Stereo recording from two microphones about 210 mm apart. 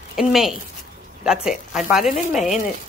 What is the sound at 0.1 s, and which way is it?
Speech, centre (ahead or behind).